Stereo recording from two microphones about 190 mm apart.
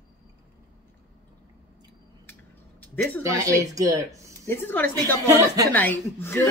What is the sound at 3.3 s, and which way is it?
Speech, 15° right (ahead or behind).